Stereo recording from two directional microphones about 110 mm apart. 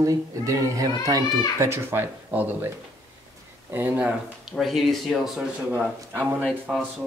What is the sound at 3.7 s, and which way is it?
Speech, 15° right (ahead or behind).